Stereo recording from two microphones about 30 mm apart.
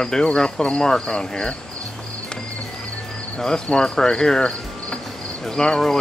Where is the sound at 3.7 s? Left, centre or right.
Left.